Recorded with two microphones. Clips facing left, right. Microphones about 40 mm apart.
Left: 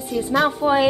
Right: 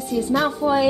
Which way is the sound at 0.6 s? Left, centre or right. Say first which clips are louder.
Left 1 dB; left.